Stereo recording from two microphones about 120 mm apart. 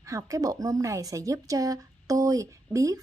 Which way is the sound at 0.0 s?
25° right (ahead or behind).